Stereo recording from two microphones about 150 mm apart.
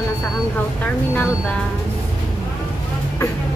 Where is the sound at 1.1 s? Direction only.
5° left (ahead or behind).